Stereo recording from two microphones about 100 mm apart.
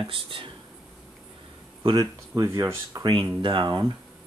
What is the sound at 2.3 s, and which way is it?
Speech, 35° right (ahead or behind).